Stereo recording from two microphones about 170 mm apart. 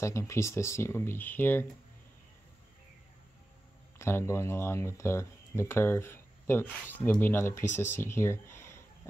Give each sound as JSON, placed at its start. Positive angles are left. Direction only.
{"t": 0.0, "sound": "speech", "side_deg": 15}
{"t": 4.0, "sound": "speech", "side_deg": 15}